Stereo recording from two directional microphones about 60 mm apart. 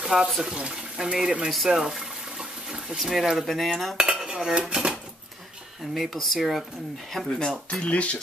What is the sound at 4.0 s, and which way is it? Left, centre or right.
Cutlery, centre.